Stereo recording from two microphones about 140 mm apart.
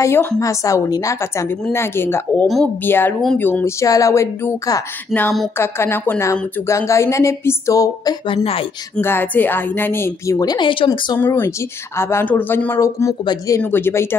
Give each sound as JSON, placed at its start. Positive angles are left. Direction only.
{"t": 0.0, "sound": "a woman's voice", "side_deg": 15}
{"t": 2.4, "sound": "speech", "side_deg": 0}
{"t": 2.8, "sound": "a woman's voice", "side_deg": 15}
{"t": 9.0, "sound": "a woman's voice", "side_deg": 15}
{"t": 11.1, "sound": "a woman's voice", "side_deg": 15}
{"t": 13.6, "sound": "a woman's voice", "side_deg": 15}